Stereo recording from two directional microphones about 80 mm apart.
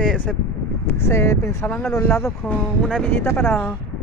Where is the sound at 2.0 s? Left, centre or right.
Left.